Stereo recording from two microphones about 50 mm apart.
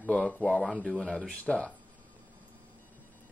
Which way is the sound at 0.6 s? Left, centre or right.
Centre.